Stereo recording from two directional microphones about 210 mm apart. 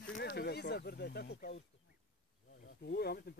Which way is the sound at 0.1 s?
50° left (ahead or behind).